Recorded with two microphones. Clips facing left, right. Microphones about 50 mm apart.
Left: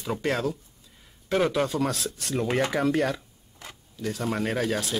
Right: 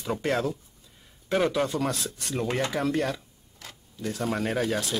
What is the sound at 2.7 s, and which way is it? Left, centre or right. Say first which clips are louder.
Speech: left 2 dB; centre.